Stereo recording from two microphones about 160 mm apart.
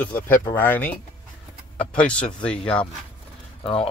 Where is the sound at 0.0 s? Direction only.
10° left (ahead or behind).